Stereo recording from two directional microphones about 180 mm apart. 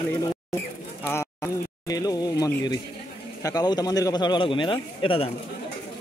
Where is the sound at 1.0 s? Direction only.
15° left (ahead or behind).